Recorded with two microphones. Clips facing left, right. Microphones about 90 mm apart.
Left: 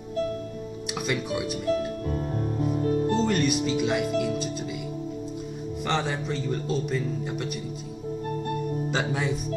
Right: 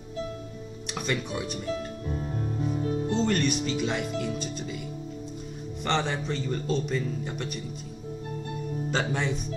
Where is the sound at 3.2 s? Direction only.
5° left (ahead or behind).